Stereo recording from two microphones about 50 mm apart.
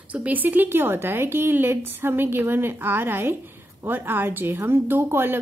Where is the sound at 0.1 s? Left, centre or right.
Right.